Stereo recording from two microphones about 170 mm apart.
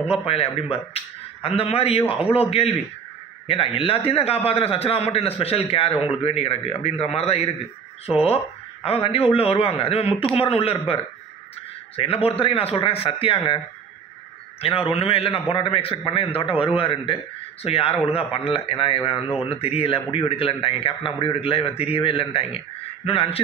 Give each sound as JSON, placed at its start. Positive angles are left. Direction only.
{"t": 0.0, "sound": "a man's voice", "side_deg": 35}
{"t": 8.8, "sound": "a man's voice", "side_deg": 35}
{"t": 12.0, "sound": "a man's voice", "side_deg": 35}
{"t": 14.6, "sound": "a man's voice", "side_deg": 35}